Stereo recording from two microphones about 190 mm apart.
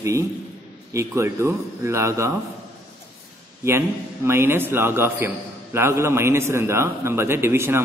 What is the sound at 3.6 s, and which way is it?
A man's voice, 15° right (ahead or behind).